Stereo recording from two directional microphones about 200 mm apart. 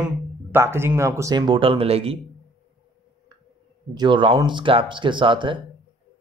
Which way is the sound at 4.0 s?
25° right (ahead or behind).